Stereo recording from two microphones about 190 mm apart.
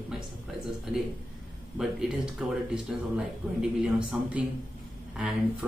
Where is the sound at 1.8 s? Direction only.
5° right (ahead or behind).